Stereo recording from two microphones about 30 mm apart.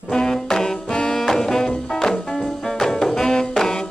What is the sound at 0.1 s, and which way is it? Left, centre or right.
Brass instrument, left.